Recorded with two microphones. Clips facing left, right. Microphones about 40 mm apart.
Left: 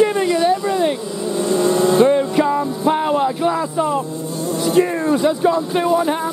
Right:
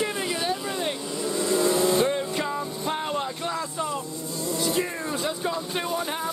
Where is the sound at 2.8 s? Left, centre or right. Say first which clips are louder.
Left 12 dB; centre.